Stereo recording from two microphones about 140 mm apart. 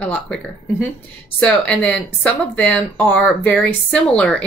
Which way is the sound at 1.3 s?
10° left (ahead or behind).